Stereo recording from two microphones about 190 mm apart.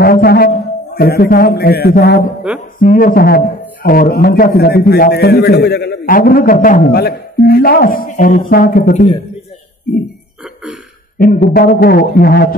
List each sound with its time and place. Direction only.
0.0 s a man's voice: 55° left (ahead or behind)
2.5 s speech: 5° right (ahead or behind)
2.8 s a man's voice: 45° left (ahead or behind)
10.4 s cough: centre (ahead or behind)
11.5 s a man's voice: 50° left (ahead or behind)